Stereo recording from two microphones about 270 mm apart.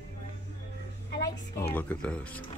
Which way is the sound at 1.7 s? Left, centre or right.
Centre.